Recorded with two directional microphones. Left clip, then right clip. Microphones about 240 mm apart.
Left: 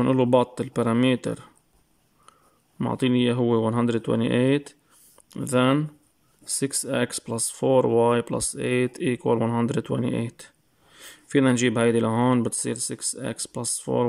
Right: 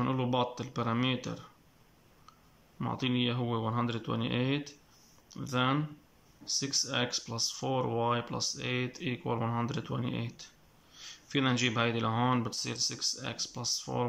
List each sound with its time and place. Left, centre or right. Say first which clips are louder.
0.0 s speech: left 11 dB; left
2.8 s speech: left 9 dB; left